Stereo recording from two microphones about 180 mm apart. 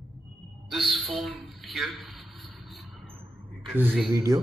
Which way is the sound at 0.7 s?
Centre (ahead or behind).